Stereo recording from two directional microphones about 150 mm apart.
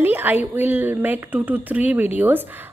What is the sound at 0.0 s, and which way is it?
Speech, 10° right (ahead or behind).